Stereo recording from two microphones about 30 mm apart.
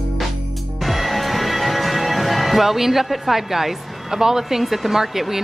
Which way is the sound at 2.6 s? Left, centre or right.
Centre.